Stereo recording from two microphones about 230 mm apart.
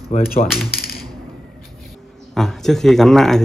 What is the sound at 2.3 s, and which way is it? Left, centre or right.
A man's voice, centre.